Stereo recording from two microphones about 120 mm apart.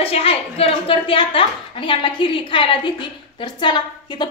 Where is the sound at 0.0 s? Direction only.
55° left (ahead or behind).